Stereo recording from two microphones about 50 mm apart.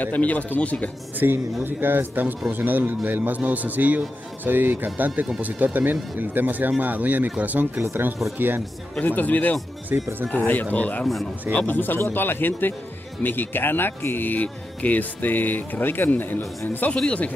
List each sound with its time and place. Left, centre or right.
0.0 s speech: left
1.2 s speech: right
8.4 s speech: right
9.0 s speech: left
9.9 s speech: right
10.3 s speech: left
16.9 s speech: left